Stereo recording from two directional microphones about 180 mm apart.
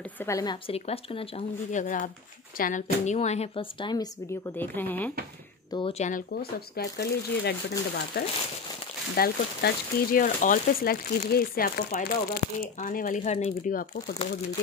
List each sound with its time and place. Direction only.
0.2 s a woman's voice: 20° left (ahead or behind)
1.7 s speech: 45° left (ahead or behind); by 4.1 s 25° left (ahead or behind)
4.6 s speech: 10° left (ahead or behind)
5.7 s speech: 30° left (ahead or behind)
6.3 s speech: 60° left (ahead or behind); by 13.7 s 40° left (ahead or behind)